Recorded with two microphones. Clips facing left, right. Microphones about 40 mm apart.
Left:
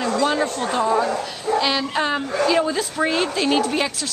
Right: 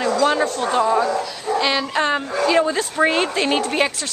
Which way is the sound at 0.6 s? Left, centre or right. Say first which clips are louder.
Right 2 dB; centre.